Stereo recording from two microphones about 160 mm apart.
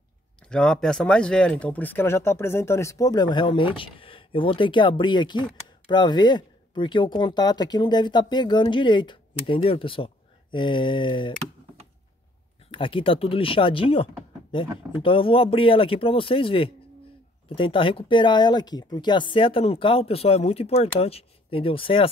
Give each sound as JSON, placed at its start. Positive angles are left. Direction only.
{"t": 0.5, "sound": "speech", "side_deg": 5}
{"t": 12.7, "sound": "speech", "side_deg": 35}